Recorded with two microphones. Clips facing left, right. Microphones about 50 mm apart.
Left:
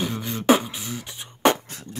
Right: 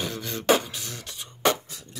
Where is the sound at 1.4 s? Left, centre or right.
Left.